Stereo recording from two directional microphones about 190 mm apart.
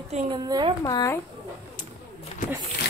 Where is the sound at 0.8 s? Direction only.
20° left (ahead or behind).